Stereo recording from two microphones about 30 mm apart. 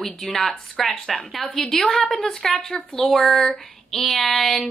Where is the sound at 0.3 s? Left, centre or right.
Centre.